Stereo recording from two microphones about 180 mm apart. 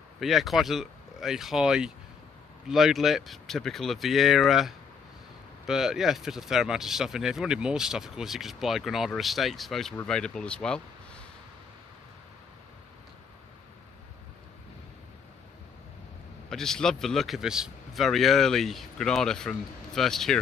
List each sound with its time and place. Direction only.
0.2 s speech: centre (ahead or behind)
16.4 s speech: 5° left (ahead or behind)